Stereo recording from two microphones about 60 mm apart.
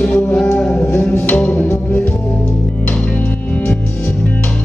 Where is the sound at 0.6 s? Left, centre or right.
Centre.